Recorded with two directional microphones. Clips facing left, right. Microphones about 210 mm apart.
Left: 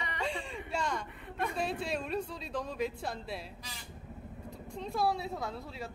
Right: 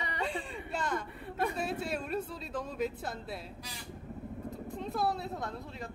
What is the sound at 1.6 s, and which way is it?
Speech, 5° right (ahead or behind).